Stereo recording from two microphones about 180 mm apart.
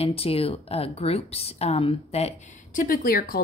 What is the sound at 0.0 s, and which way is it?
A woman's voice, 30° left (ahead or behind).